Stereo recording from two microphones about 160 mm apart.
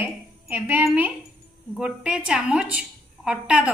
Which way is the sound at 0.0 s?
10° right (ahead or behind).